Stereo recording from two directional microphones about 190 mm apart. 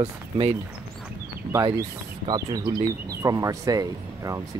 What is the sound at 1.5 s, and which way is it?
Speech, 20° right (ahead or behind).